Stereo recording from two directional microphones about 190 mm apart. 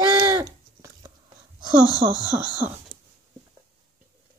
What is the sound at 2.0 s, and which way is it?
Speech, 50° right (ahead or behind).